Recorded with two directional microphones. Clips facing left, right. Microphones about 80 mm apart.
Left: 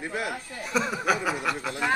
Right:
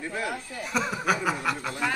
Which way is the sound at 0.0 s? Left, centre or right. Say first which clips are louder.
Left 1 dB; centre.